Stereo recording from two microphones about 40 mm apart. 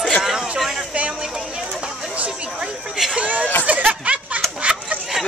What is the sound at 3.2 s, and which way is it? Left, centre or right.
Speech, right.